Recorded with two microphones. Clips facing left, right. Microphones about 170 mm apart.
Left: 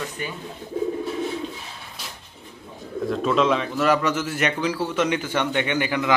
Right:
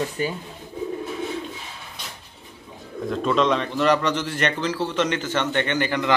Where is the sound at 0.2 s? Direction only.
35° right (ahead or behind).